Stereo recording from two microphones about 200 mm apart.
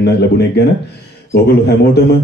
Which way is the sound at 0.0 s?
55° left (ahead or behind).